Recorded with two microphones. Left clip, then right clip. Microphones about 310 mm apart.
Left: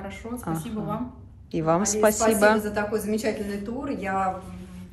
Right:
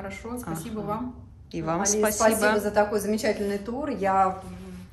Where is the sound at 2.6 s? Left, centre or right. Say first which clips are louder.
Right 4 dB; right.